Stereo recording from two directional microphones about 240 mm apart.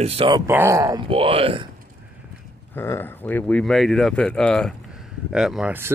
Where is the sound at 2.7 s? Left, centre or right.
Centre.